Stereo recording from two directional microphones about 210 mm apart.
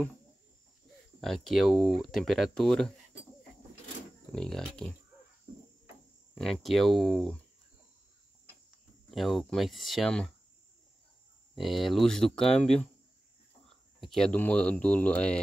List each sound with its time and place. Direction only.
1.2 s speech: centre (ahead or behind)
4.3 s speech: 5° left (ahead or behind)
6.3 s speech: centre (ahead or behind)
9.1 s speech: centre (ahead or behind)
11.5 s speech: centre (ahead or behind)